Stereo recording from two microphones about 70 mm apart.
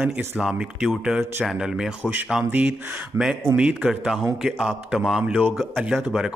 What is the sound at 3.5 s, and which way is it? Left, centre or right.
A man's voice, centre.